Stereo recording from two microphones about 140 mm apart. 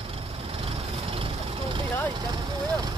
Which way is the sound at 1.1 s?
40° right (ahead or behind).